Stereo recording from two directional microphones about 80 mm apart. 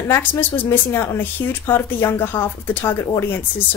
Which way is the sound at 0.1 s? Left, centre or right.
Left.